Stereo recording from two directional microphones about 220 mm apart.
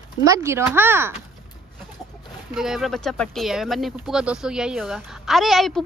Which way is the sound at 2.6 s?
Centre (ahead or behind).